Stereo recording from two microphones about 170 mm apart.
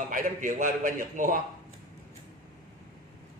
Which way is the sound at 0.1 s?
50° right (ahead or behind).